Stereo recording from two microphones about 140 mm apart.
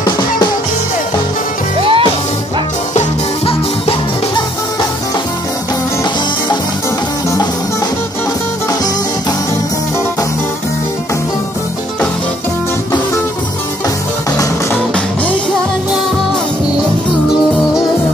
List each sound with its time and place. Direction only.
1.8 s music: 40° right (ahead or behind)
2.9 s music: 50° left (ahead or behind)